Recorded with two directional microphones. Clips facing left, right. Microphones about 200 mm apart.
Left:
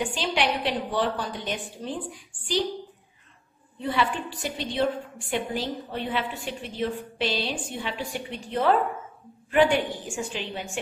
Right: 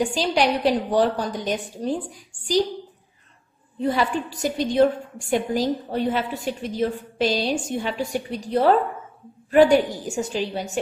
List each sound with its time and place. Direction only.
0.0 s a woman's voice: 40° right (ahead or behind)
3.8 s a woman's voice: 40° right (ahead or behind)